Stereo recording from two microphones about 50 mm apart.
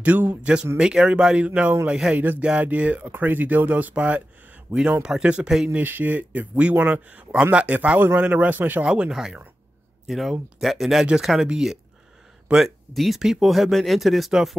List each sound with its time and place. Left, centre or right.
0.0 s speech: right
0.4 s speech: right
2.1 s speech: right
2.6 s speech: right
4.7 s speech: right
5.0 s speech: centre
5.7 s speech: right
8.8 s speech: right
9.1 s speech: centre
12.6 s speech: centre